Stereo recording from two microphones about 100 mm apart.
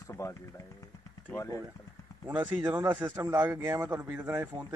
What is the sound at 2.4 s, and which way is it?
Speech, 40° right (ahead or behind).